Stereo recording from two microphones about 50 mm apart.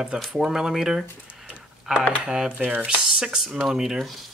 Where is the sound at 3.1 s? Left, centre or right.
Centre.